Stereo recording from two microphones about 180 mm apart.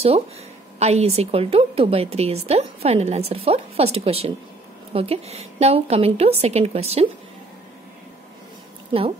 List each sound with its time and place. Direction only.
0.7 s a woman's voice: 35° right (ahead or behind)